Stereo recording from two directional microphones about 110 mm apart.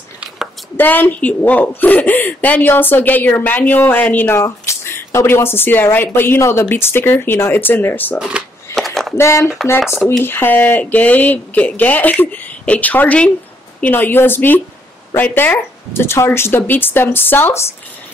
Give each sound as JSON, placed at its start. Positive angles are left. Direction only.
{"t": 0.7, "sound": "a woman's voice", "side_deg": 15}
{"t": 8.2, "sound": "speech", "side_deg": -10}
{"t": 8.7, "sound": "a sound", "side_deg": 0}
{"t": 9.1, "sound": "a woman's voice", "side_deg": 25}